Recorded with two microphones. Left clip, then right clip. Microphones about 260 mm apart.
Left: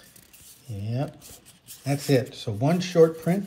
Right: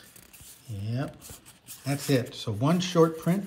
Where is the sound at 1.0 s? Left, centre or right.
Centre.